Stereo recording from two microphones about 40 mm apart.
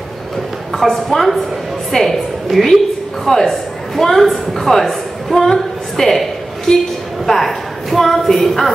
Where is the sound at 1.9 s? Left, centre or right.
Centre.